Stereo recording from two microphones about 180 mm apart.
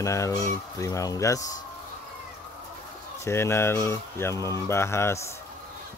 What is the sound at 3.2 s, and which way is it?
Speech, 15° left (ahead or behind).